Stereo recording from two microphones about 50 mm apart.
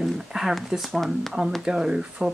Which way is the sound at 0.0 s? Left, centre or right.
Centre.